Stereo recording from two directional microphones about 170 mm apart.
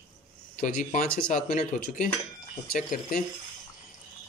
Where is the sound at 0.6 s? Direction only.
55° left (ahead or behind).